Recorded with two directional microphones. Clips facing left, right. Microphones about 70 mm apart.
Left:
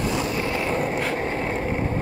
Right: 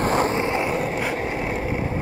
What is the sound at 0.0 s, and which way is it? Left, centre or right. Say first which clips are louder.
Vehicle: right 5 dB; right.